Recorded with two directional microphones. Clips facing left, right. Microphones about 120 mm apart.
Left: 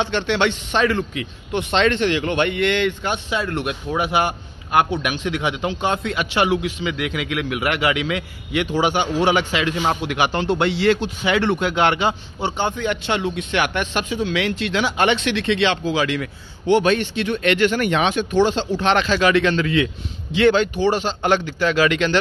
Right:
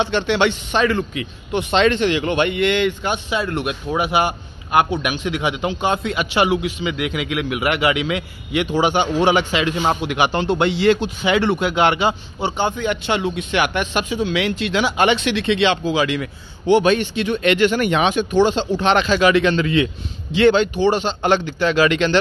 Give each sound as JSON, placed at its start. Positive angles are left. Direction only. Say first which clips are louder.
{"t": 0.0, "sound": "a man's voice", "louder": "right 2 dB", "side_deg": -15}